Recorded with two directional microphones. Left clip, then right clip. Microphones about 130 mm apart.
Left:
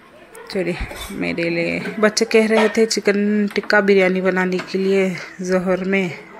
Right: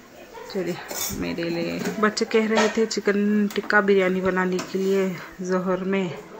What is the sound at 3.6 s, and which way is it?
Speech, 40° left (ahead or behind).